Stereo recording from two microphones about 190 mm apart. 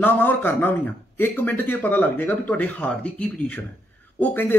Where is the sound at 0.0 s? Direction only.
10° left (ahead or behind).